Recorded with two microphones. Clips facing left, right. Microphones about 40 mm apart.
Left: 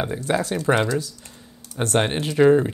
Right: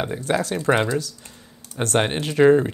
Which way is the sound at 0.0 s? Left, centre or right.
Right.